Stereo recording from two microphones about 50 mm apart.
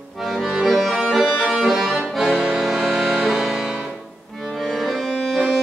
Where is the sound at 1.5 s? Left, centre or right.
Centre.